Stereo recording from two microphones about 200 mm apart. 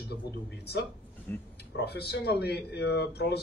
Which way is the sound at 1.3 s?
10° left (ahead or behind).